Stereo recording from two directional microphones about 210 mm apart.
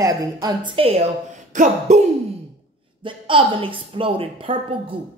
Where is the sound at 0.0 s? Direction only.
15° right (ahead or behind).